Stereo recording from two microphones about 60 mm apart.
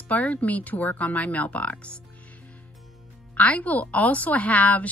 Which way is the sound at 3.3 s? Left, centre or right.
Left.